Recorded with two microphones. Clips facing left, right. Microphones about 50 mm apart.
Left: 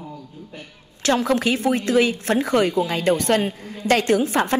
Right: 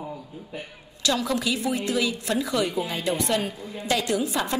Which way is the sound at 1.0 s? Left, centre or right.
Left.